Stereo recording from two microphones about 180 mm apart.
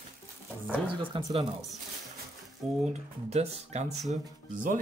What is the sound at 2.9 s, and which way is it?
Speech, 40° right (ahead or behind).